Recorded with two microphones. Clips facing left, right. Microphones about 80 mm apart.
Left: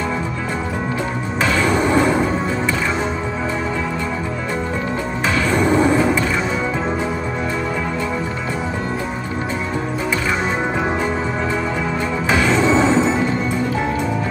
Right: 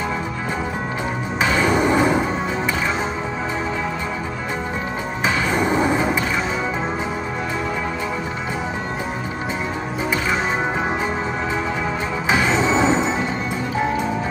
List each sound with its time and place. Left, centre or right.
1.4 s music: centre
5.5 s a sound: centre
12.3 s music: centre